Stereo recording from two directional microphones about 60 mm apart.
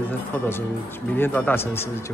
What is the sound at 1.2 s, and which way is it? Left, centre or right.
Speech, left.